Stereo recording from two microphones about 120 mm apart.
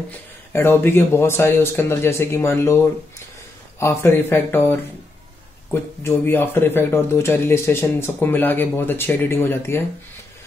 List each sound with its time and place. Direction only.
0.5 s speech: 20° left (ahead or behind)
3.8 s speech: 20° left (ahead or behind)